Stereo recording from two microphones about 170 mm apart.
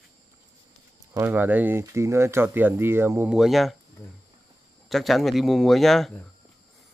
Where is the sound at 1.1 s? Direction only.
10° right (ahead or behind).